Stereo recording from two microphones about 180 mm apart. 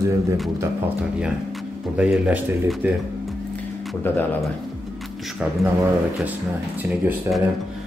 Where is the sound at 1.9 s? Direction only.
5° right (ahead or behind).